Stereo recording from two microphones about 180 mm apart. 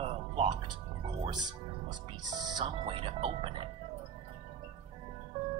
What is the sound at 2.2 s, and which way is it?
Music, 25° right (ahead or behind).